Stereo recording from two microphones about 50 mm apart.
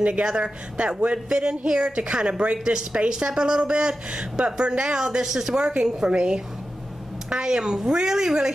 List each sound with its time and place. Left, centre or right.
0.0 s a woman's voice: right